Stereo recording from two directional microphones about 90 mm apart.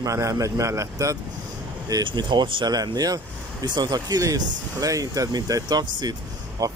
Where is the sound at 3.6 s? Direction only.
55° right (ahead or behind).